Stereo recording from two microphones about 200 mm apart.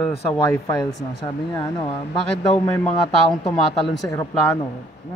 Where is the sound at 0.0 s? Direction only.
15° left (ahead or behind).